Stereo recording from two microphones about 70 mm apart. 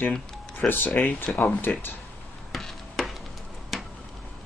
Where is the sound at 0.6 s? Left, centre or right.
Centre.